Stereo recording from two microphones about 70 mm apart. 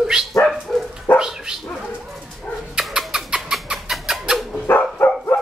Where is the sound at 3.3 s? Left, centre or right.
Centre.